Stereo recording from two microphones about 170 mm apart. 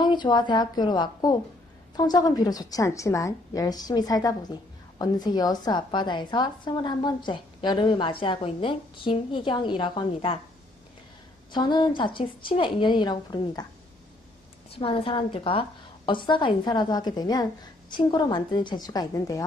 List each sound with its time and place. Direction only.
0.0 s a woman's voice: 25° left (ahead or behind)
11.5 s a woman's voice: 25° left (ahead or behind)
14.7 s a woman's voice: 30° left (ahead or behind)